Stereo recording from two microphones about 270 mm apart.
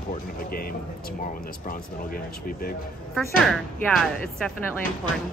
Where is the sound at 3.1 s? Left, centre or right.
Centre.